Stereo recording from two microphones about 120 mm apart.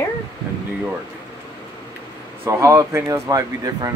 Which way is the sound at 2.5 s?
25° right (ahead or behind).